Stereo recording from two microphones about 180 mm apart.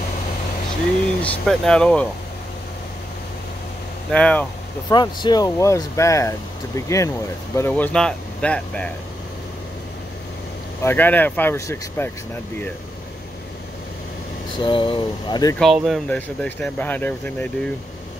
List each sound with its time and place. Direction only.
1.2 s speech: 5° left (ahead or behind)
4.1 s speech: 5° left (ahead or behind)
4.8 s speech: 20° left (ahead or behind); by 8.8 s 5° left (ahead or behind)
10.8 s speech: 10° left (ahead or behind)
14.5 s speech: 25° left (ahead or behind)
15.6 s speech: centre (ahead or behind)